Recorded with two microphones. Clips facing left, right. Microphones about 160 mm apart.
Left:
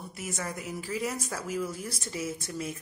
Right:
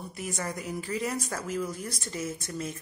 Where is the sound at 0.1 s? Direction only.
5° left (ahead or behind).